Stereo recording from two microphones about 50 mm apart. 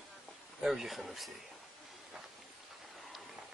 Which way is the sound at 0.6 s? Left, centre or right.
Centre.